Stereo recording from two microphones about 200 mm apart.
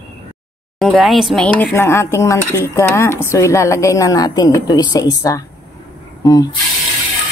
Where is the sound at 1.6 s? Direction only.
10° left (ahead or behind).